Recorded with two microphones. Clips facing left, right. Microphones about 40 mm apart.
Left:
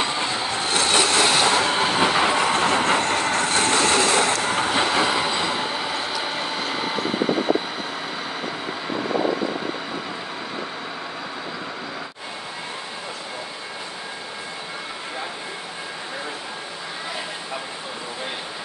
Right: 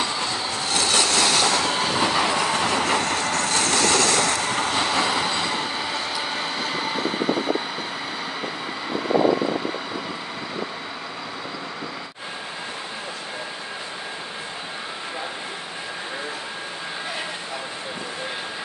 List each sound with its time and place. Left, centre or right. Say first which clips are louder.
0.0 s train: left 2 dB; left; by 7.1 s centre